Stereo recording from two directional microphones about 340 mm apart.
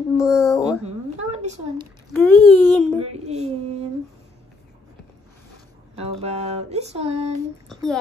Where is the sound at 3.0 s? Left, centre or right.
Centre.